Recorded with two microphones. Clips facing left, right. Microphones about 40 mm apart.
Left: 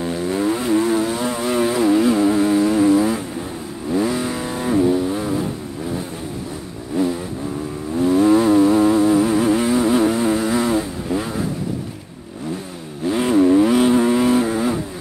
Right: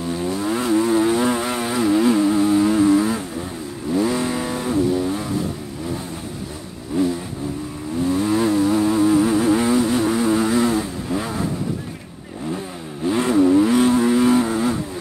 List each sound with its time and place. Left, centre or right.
0.5 s vehicle: centre
1.0 s vehicle: centre
1.6 s a sound: centre
2.5 s vehicle: centre
8.0 s vehicle: centre
13.0 s motorcycle: centre
13.3 s vehicle: centre
13.7 s vehicle: centre